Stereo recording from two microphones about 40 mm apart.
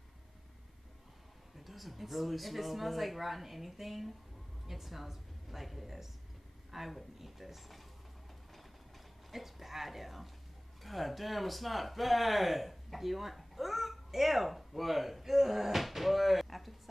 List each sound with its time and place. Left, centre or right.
1.6 s a woman's voice: centre
9.3 s speech: centre